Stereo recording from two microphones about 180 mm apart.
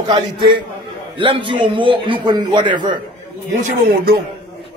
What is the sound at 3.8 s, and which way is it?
Speech, 55° right (ahead or behind).